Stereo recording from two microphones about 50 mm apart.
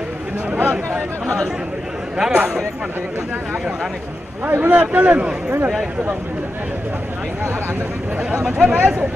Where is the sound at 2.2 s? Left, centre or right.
Centre.